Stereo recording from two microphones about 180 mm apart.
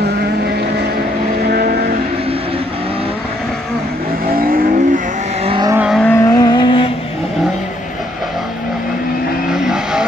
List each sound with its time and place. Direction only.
1.5 s vehicle: 60° right (ahead or behind)
4.4 s vehicle: 50° right (ahead or behind)
5.4 s vehicle: 30° right (ahead or behind)
5.7 s vehicle: 10° right (ahead or behind)
5.9 s vehicle: 10° left (ahead or behind); by 6.9 s 25° left (ahead or behind)